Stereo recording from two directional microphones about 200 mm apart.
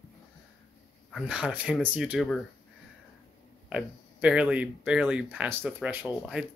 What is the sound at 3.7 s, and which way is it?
Speech, 5° right (ahead or behind).